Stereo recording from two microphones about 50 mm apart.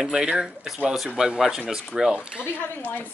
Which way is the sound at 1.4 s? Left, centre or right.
Centre.